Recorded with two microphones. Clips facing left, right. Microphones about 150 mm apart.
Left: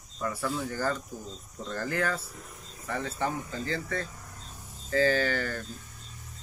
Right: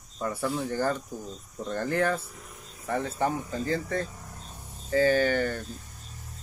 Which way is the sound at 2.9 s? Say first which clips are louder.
Right 4 dB; 15° right (ahead or behind).